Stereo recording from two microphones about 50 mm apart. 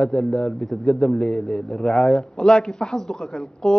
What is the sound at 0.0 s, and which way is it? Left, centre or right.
A man's voice, centre.